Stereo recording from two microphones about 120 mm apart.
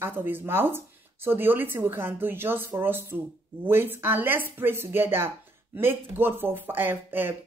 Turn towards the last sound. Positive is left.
turn(degrees=-15)  # may be behind; listen again after turning